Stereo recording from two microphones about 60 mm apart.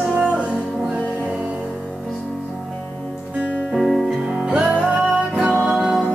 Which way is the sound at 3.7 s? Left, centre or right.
Centre.